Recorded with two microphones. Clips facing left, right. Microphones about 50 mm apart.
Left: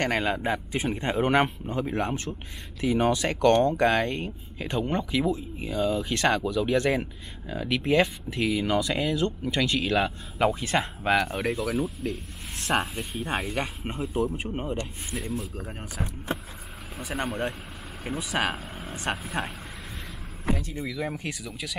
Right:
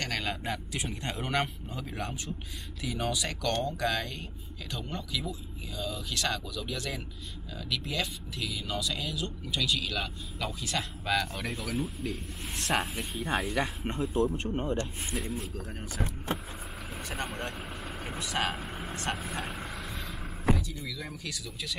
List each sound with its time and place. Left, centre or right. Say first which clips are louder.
0.0 s speech: left 8 dB; left
11.4 s speech: left 8 dB; centre
11.7 s speech: left 5 dB; centre
15.5 s speech: left 2 dB; centre
17.1 s speech: left 7 dB; centre
20.5 s speech: left 5 dB; left